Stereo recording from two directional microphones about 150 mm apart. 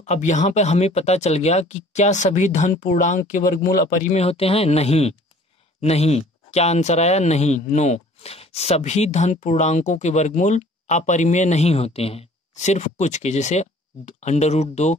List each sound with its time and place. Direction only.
0.0 s speech: 50° left (ahead or behind); by 4.1 s 70° left (ahead or behind)
4.1 s speech: 45° left (ahead or behind)